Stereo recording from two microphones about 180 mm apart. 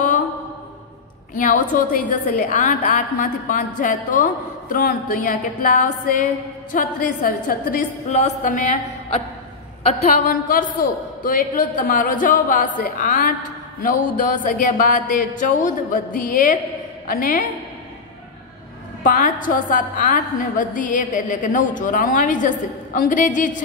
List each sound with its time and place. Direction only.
1.3 s a woman's voice: 50° left (ahead or behind)
9.8 s a woman's voice: 50° left (ahead or behind)
19.0 s a woman's voice: 50° left (ahead or behind)